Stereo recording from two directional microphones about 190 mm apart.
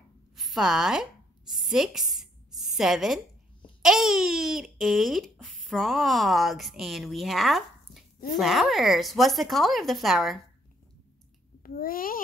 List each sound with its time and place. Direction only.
0.4 s a sound: centre (ahead or behind)
3.8 s speech: centre (ahead or behind)
11.6 s a child's voice: 50° left (ahead or behind)